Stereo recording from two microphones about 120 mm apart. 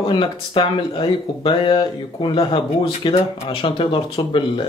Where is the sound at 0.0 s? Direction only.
45° left (ahead or behind).